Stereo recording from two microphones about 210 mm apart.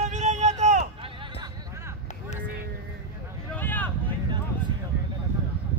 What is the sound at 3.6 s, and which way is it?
Vehicle, 10° left (ahead or behind).